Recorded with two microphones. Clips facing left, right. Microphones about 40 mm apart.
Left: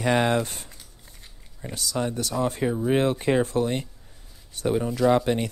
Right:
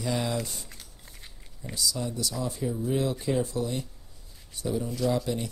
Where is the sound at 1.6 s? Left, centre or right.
Left.